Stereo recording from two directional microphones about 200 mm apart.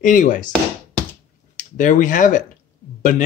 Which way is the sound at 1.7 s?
40° left (ahead or behind).